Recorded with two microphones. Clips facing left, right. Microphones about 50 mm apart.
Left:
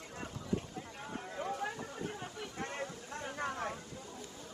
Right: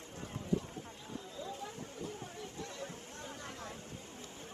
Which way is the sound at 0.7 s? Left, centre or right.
Left.